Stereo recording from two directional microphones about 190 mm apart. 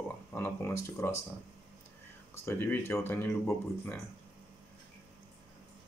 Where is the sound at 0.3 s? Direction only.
10° left (ahead or behind).